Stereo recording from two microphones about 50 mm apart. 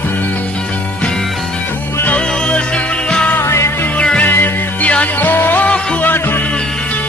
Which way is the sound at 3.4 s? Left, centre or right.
Left.